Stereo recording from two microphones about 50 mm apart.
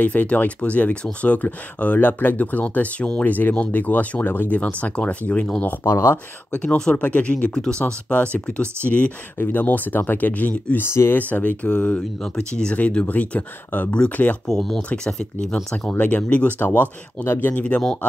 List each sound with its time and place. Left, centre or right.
0.0 s speech: left
5.9 s speech: left
6.5 s speech: left
7.5 s speech: centre
8.1 s speech: left
9.4 s speech: left
10.8 s speech: left
11.1 s speech: left
14.5 s speech: centre
14.8 s speech: centre
15.9 s speech: left
16.5 s speech: left
17.2 s speech: left